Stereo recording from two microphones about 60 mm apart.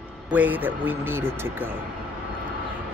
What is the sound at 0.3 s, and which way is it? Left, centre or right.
Speech, right.